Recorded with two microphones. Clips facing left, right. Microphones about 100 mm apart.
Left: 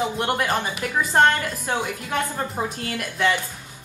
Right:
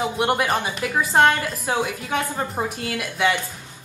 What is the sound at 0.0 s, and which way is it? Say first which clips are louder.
Speech: right 2 dB; 10° right (ahead or behind).